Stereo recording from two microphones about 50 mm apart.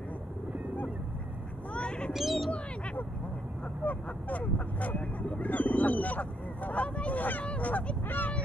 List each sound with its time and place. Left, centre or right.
1.7 s a sound: left
2.1 s bird: centre
3.8 s speech: left